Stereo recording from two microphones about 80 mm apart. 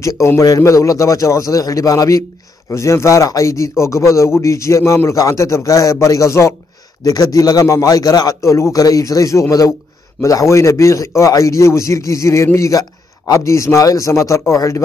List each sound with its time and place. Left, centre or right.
0.0 s a man's voice: left
7.0 s a man's voice: left